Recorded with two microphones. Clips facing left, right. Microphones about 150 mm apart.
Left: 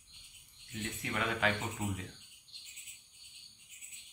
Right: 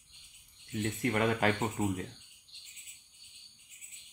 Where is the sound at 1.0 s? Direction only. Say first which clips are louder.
Right 5 dB; 45° right (ahead or behind).